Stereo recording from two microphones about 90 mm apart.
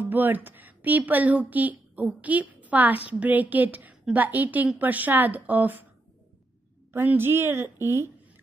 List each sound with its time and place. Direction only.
0.0 s speech: 20° right (ahead or behind)
6.9 s speech: 25° right (ahead or behind)